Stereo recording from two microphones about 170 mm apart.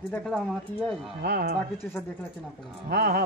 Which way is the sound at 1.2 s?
75° right (ahead or behind).